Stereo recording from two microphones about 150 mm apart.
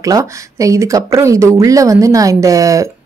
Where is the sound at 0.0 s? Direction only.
20° right (ahead or behind).